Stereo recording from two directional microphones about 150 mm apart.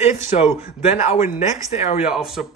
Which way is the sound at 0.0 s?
45° left (ahead or behind).